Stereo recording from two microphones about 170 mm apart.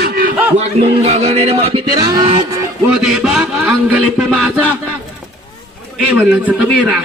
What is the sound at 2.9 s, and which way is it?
Speech, 5° right (ahead or behind).